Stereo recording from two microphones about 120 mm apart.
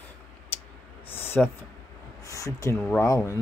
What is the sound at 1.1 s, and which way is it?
Speech, 20° left (ahead or behind).